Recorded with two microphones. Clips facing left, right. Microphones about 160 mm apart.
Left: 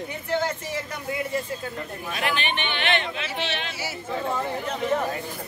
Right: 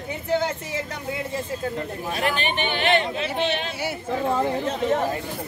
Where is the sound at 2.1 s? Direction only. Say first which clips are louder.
Right 2 dB; 40° right (ahead or behind).